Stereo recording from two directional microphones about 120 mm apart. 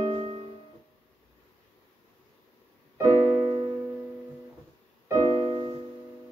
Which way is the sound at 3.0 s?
25° right (ahead or behind).